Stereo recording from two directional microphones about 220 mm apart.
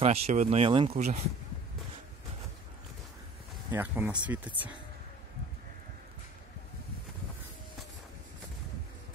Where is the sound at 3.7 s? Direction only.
10° right (ahead or behind).